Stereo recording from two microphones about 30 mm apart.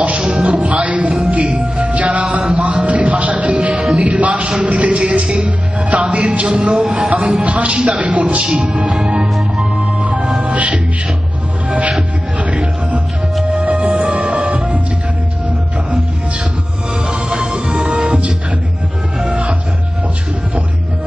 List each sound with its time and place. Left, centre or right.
0.0 s music: right
4.0 s a man's voice: right
5.2 s music: right
5.8 s speech: right
6.7 s a sound: right
7.2 s speech: right
9.6 s organ: right
10.4 s music: right
12.4 s music: right
17.1 s music: right
17.8 s music: right